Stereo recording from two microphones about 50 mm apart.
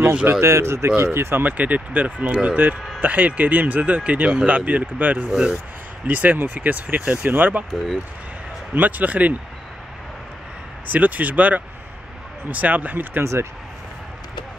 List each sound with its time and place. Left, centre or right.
0.4 s speech: right
1.4 s speech: right
2.5 s speech: right
5.3 s speech: centre
6.0 s speech: right
8.7 s speech: right
10.9 s speech: right
13.2 s speech: right